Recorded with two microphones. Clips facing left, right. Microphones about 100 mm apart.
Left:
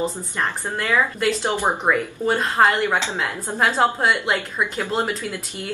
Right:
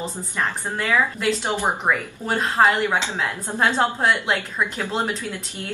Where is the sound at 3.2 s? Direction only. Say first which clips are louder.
Left 1 dB; centre (ahead or behind).